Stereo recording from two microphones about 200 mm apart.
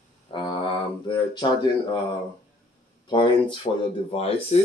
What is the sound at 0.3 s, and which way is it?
Mantra, 25° left (ahead or behind).